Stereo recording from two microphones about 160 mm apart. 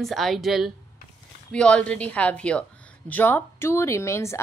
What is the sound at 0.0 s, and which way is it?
A woman's voice, centre (ahead or behind).